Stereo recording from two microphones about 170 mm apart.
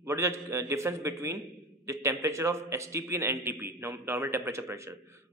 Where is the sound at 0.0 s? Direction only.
15° right (ahead or behind).